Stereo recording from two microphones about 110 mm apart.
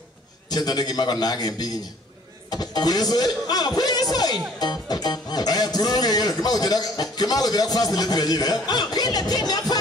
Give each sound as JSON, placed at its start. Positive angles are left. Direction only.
{"t": 0.5, "sound": "speech", "side_deg": 35}